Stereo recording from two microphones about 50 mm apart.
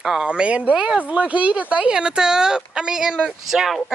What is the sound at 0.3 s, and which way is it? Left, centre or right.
Speech, right.